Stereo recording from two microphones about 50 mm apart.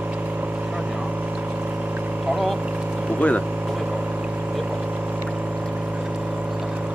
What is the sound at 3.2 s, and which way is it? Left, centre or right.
Speech, left.